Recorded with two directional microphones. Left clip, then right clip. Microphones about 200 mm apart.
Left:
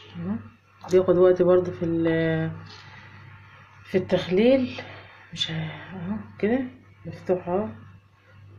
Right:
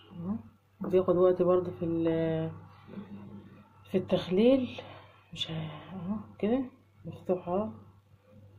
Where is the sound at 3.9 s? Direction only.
15° right (ahead or behind).